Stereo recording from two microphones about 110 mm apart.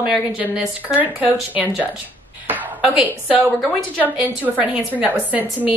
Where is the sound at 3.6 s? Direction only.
5° left (ahead or behind).